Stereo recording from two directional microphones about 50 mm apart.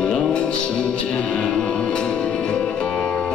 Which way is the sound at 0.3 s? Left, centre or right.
Centre.